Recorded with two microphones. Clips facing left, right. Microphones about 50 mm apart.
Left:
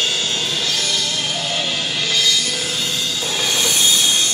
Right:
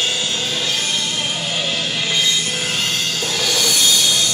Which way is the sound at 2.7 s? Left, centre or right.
Right.